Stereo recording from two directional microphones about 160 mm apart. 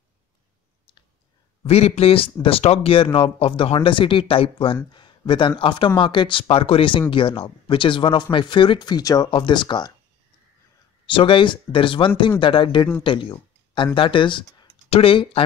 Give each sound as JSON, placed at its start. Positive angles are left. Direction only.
{"t": 1.6, "sound": "speech", "side_deg": 40}
{"t": 11.1, "sound": "speech", "side_deg": 30}